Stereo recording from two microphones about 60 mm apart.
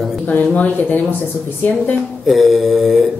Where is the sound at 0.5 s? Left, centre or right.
Left.